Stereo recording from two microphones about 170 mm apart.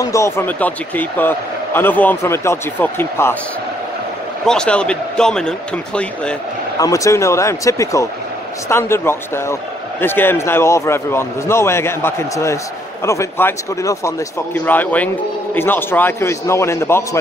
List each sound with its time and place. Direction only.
0.0 s a man's voice: 20° left (ahead or behind)
4.5 s speech: 5° left (ahead or behind)
6.8 s a man's voice: 20° left (ahead or behind)